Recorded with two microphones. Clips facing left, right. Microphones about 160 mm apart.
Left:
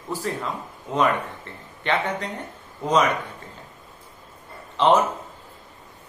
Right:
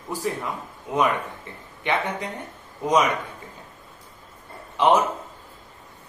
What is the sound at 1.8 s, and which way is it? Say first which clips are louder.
Speech: left 1 dB; 15° right (ahead or behind).